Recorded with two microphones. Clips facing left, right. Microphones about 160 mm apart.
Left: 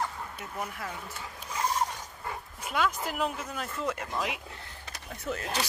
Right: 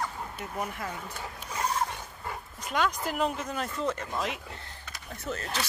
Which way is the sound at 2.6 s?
5° left (ahead or behind).